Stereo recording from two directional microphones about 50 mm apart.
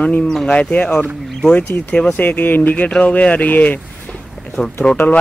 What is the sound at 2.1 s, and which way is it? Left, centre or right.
Speech, left.